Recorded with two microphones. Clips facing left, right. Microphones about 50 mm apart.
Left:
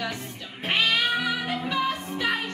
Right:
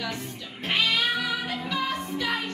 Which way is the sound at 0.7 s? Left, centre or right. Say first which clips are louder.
Left 1 dB; left.